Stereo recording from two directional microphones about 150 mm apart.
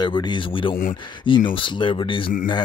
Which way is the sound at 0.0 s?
30° left (ahead or behind).